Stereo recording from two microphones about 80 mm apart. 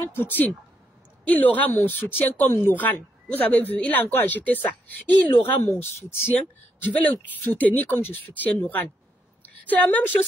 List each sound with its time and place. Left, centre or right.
0.1 s a woman's voice: left